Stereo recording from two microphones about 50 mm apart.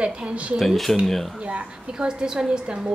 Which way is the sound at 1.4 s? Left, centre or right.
Right.